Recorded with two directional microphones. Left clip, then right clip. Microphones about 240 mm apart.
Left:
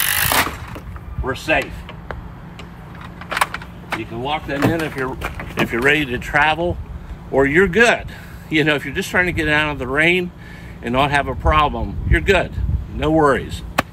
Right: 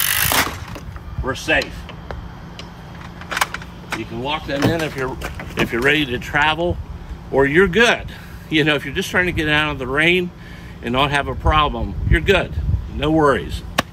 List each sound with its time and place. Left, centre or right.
0.0 s mechanisms: centre
1.2 s speech: centre
3.3 s speech: centre